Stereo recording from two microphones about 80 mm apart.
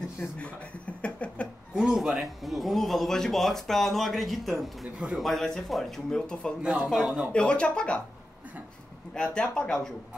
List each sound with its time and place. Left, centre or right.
0.4 s a sound: centre
1.8 s speech: centre
6.6 s speech: centre
6.9 s speech: centre
7.3 s speech: centre
9.1 s speech: centre